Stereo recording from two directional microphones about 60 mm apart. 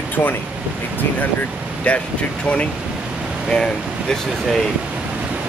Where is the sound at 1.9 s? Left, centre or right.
Left.